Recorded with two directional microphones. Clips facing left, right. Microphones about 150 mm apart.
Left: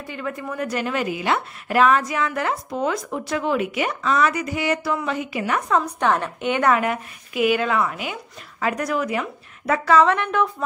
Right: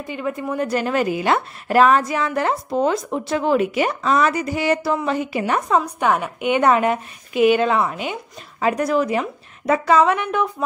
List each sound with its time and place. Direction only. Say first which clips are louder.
0.0 s a woman's voice: right 4 dB; 20° right (ahead or behind)
5.4 s a woman's voice: right 1 dB; 20° right (ahead or behind)
5.9 s a woman's voice: right 1 dB; 10° right (ahead or behind)